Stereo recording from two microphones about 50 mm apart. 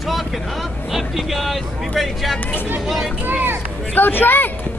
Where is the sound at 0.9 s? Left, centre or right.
Centre.